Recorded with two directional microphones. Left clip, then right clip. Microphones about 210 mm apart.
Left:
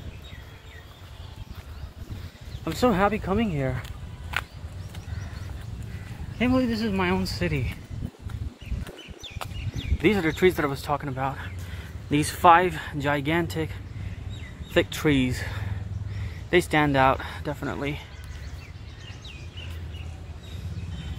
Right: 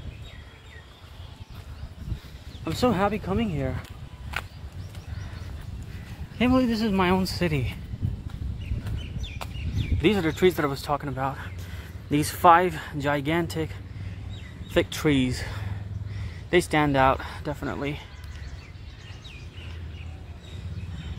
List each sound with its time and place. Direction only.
2.6 s speech: centre (ahead or behind)
6.3 s speech: 25° right (ahead or behind)
10.0 s speech: 5° right (ahead or behind)
14.7 s speech: 5° right (ahead or behind)